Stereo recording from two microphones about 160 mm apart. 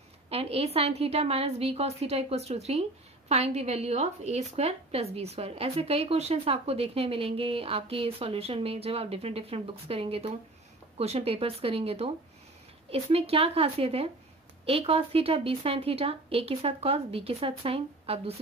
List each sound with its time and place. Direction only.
0.3 s a woman's voice: 40° right (ahead or behind)